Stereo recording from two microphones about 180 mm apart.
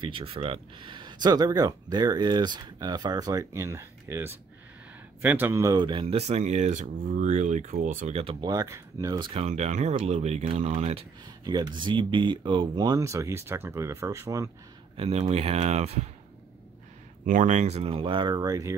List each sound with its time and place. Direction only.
0.0 s speech: 30° right (ahead or behind); by 8.2 s 45° right (ahead or behind)
8.2 s speech: 25° right (ahead or behind)
11.4 s speech: 20° right (ahead or behind)
15.0 s speech: 35° right (ahead or behind)
17.2 s speech: 45° right (ahead or behind); by 18.8 s 20° right (ahead or behind)